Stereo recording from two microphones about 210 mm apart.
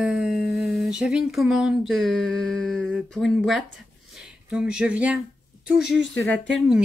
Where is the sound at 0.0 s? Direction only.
5° right (ahead or behind).